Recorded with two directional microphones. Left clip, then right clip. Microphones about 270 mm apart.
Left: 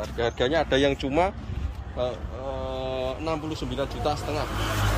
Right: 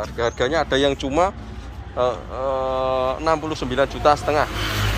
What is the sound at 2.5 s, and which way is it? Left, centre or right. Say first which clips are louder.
Mantra: right 9 dB; right.